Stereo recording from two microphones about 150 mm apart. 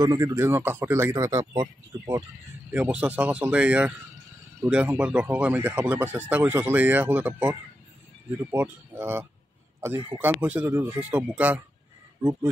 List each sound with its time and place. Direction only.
0.0 s speech: 25° right (ahead or behind)
2.7 s speech: 10° right (ahead or behind)